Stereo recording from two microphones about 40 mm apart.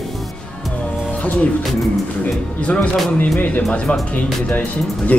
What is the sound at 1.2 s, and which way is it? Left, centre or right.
Speech, left.